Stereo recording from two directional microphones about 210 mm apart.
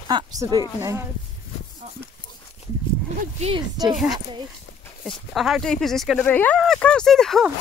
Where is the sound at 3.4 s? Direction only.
20° right (ahead or behind).